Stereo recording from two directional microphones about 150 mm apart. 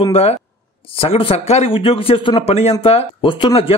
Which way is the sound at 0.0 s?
45° left (ahead or behind).